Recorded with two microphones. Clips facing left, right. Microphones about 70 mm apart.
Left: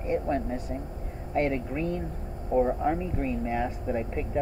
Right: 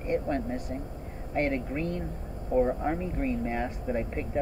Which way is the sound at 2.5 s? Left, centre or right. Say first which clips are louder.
Left 1 dB; centre.